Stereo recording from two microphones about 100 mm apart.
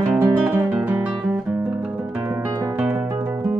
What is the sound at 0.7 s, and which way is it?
Guitar, 15° right (ahead or behind).